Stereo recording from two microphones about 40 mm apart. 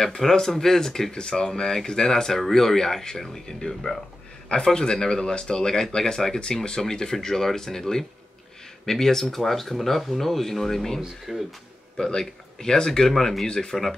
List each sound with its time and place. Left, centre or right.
0.0 s speech: centre
11.0 s speech: centre
12.0 s speech: centre